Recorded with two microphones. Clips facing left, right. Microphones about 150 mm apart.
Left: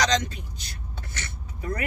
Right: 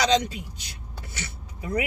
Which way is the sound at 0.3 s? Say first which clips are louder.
Right 3 dB; 10° right (ahead or behind).